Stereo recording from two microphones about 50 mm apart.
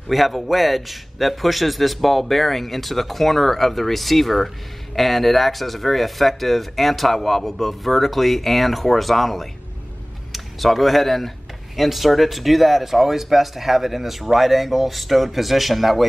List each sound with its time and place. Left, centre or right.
0.1 s speech: centre